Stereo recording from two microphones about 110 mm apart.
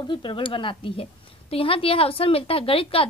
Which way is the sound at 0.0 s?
50° left (ahead or behind).